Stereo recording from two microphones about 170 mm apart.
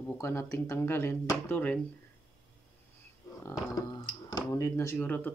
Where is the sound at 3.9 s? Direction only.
25° left (ahead or behind).